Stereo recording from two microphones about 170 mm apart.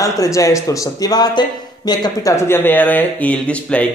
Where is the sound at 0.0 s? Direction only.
20° left (ahead or behind).